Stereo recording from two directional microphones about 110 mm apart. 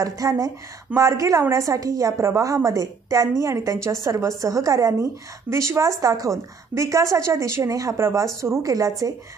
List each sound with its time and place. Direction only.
0.0 s a woman's voice: 30° right (ahead or behind)